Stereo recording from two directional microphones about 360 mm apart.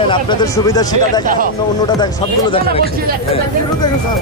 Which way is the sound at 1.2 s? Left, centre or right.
Right.